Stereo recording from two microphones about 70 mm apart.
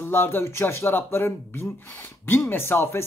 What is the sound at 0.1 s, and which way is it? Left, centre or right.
Speech, left.